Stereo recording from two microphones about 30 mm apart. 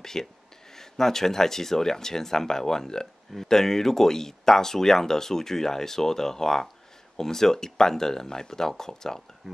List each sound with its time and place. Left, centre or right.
0.0 s speech: centre